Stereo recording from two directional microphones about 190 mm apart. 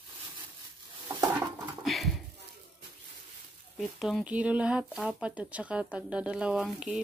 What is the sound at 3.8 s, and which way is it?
Speech, centre (ahead or behind).